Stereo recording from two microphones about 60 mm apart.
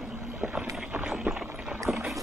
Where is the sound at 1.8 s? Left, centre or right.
Centre.